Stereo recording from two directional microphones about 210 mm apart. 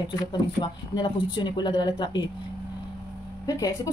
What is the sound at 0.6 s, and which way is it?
A woman's voice, 20° left (ahead or behind).